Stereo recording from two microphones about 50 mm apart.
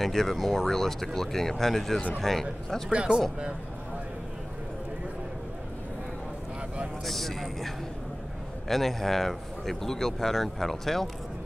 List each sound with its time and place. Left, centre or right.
0.0 s speech: centre
2.9 s speech: right
7.1 s speech: centre